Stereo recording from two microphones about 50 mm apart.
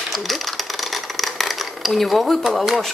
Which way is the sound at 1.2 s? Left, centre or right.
Centre.